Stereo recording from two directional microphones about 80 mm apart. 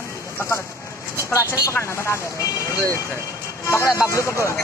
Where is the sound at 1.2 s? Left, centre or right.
Left.